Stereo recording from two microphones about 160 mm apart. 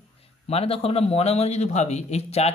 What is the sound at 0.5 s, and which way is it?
Speech, 35° left (ahead or behind).